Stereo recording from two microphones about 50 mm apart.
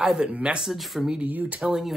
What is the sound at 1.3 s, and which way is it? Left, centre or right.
Speech, right.